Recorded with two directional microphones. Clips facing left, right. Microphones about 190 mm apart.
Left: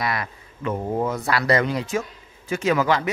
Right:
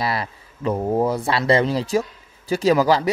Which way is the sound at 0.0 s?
30° right (ahead or behind).